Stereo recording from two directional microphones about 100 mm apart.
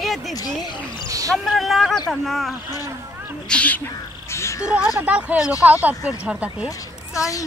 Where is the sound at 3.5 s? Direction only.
15° left (ahead or behind).